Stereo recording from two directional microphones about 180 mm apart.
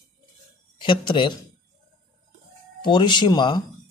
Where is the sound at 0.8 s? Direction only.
25° left (ahead or behind).